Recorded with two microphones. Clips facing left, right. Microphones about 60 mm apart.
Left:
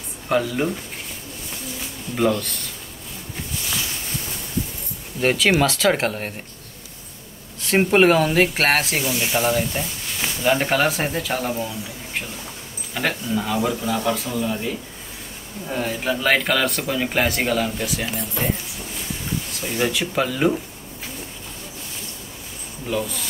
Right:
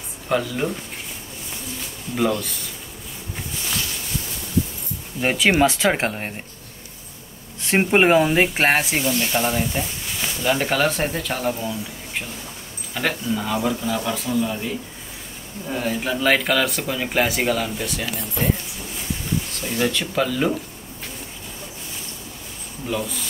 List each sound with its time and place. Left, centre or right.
0.3 s speech: centre
2.1 s speech: centre
5.2 s speech: centre
7.6 s speech: right
8.3 s speech: centre
9.1 s speech: centre
10.2 s speech: centre
15.7 s speech: centre
22.8 s speech: centre